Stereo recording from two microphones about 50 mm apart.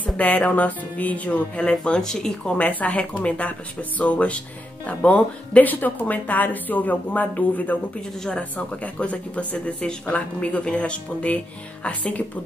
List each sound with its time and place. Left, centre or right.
0.0 s speech: left; by 2.5 s centre
2.5 s speech: left
8.2 s speech: left